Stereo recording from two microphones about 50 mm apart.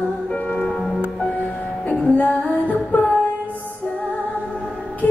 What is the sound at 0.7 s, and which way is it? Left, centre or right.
Music, centre.